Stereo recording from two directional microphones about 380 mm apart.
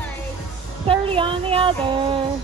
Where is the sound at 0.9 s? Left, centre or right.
Centre.